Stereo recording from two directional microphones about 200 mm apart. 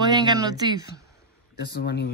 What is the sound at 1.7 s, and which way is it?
Speech, 55° left (ahead or behind).